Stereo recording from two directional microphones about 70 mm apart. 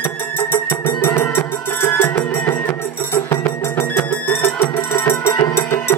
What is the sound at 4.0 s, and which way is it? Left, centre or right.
Music, left.